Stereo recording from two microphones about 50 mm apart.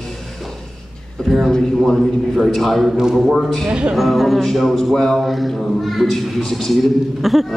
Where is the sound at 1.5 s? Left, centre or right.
Centre.